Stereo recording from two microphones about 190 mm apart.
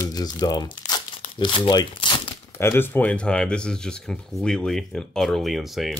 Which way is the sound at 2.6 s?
10° left (ahead or behind).